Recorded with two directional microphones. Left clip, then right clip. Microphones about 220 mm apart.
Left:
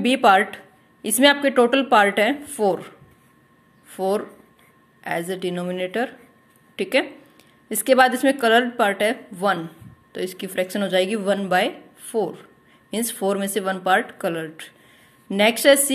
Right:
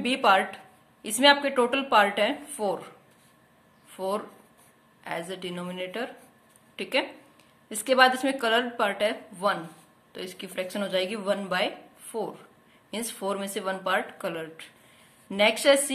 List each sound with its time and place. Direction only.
0.0 s speech: 25° left (ahead or behind)
3.9 s a woman's voice: 25° left (ahead or behind)